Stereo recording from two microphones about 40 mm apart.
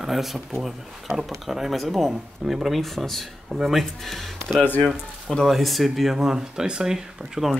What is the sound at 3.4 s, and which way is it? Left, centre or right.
Speech, centre.